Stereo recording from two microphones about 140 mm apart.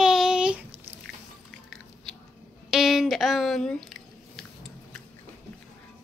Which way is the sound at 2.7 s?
5° right (ahead or behind).